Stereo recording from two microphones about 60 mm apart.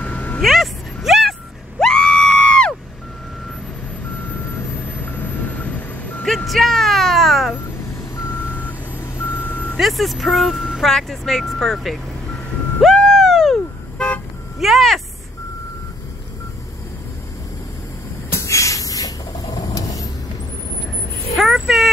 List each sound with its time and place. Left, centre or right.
0.0 s vehicle: left
0.4 s vehicle: centre
1.8 s screaming: centre
4.2 s vehicle: left
6.2 s vehicle: centre
8.2 s reversing beeps: left
9.2 s vehicle: left
9.8 s speech: centre
12.9 s a sound: centre
14.6 s vehicle: centre
18.3 s vehicle: left
21.4 s vehicle: centre